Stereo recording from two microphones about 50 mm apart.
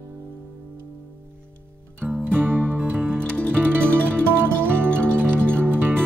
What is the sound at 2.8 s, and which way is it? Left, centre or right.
Music, right.